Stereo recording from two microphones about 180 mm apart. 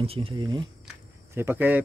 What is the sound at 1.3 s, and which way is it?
Speech, 15° right (ahead or behind).